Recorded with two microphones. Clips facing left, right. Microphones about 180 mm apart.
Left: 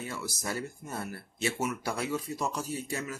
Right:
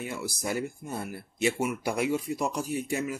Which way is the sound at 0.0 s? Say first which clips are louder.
Right 3 dB; 15° right (ahead or behind).